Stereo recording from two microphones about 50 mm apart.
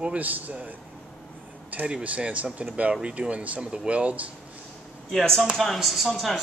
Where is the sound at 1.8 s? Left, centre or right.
Right.